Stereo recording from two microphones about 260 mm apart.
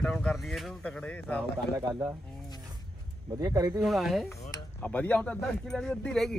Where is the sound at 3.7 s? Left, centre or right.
Centre.